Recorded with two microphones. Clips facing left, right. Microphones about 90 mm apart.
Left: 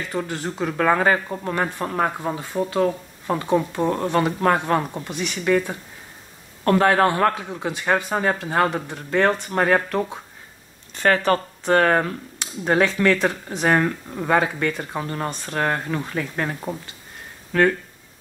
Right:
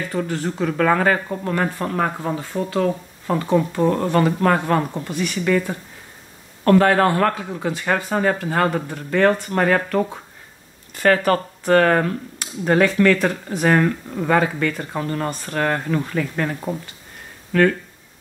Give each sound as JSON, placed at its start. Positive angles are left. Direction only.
{"t": 0.1, "sound": "speech", "side_deg": 20}
{"t": 6.6, "sound": "speech", "side_deg": 15}
{"t": 11.0, "sound": "speech", "side_deg": 25}
{"t": 17.5, "sound": "speech", "side_deg": 30}